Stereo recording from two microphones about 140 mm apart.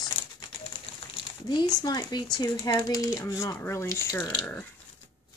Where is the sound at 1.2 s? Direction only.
30° left (ahead or behind); by 4.7 s 10° left (ahead or behind).